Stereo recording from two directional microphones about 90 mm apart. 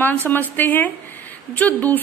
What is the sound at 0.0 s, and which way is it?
A woman's voice, 20° left (ahead or behind).